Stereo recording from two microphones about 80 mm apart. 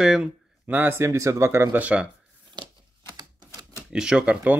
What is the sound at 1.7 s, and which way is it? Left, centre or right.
Speech, centre.